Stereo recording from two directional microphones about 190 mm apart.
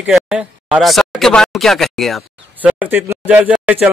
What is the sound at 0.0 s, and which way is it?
Speech, 5° right (ahead or behind).